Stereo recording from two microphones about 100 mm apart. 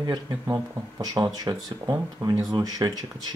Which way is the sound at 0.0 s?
40° right (ahead or behind).